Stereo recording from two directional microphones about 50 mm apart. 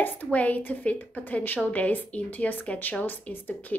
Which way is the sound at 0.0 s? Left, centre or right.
Left.